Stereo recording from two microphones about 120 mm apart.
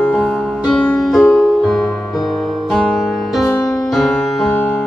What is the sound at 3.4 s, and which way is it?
Music, 25° left (ahead or behind).